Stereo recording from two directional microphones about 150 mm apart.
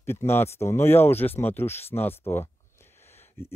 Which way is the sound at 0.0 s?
15° left (ahead or behind).